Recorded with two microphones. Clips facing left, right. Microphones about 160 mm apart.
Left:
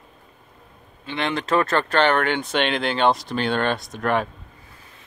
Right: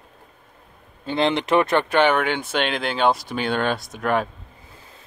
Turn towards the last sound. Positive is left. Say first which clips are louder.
# even
turn(degrees=-5)  # may be behind; listen again after turning